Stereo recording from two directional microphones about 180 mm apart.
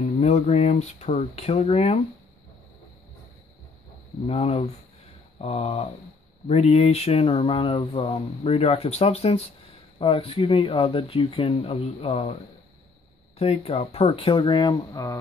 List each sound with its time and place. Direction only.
0.2 s speech: 35° left (ahead or behind)
4.3 s speech: 35° left (ahead or behind)
13.4 s speech: 35° left (ahead or behind)